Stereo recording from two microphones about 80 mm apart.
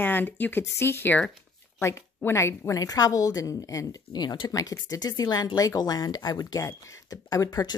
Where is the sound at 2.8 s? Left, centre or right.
Left.